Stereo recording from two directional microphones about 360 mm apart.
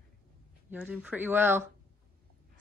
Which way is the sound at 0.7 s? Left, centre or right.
Centre.